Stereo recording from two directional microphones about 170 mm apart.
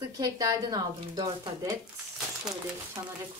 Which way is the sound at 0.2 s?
20° right (ahead or behind).